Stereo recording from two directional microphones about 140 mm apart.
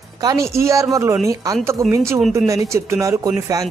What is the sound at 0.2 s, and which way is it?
Speech, 25° right (ahead or behind).